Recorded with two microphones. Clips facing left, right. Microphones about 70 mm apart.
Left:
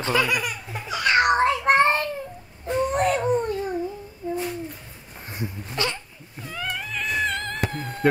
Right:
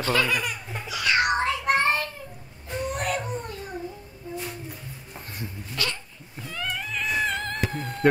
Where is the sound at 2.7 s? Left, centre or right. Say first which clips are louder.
Left 7 dB; left.